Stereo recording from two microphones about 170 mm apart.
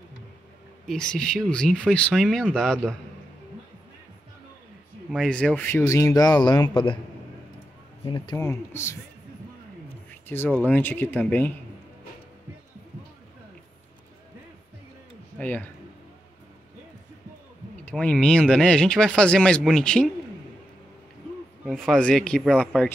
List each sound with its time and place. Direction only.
0.8 s speech: 5° left (ahead or behind)
5.1 s speech: 5° left (ahead or behind); by 7.0 s 30° left (ahead or behind)
8.0 s speech: 25° left (ahead or behind)
10.2 s speech: 10° left (ahead or behind)
15.3 s speech: 10° left (ahead or behind)
17.8 s speech: 10° left (ahead or behind)
21.6 s speech: 5° left (ahead or behind)